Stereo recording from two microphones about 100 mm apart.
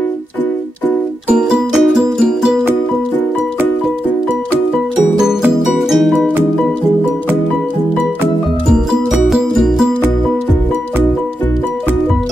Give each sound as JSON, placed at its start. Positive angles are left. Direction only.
{"t": 1.3, "sound": "music", "side_deg": -5}
{"t": 5.8, "sound": "music", "side_deg": 0}
{"t": 9.1, "sound": "music", "side_deg": 0}